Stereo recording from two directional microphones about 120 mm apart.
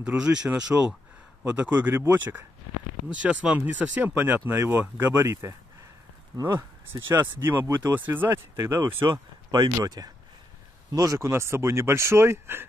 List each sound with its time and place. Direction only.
0.0 s speech: 5° right (ahead or behind); by 6.6 s 30° right (ahead or behind)
6.9 s speech: 20° right (ahead or behind)